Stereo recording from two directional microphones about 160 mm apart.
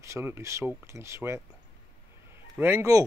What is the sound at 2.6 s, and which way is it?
Speech, 15° right (ahead or behind).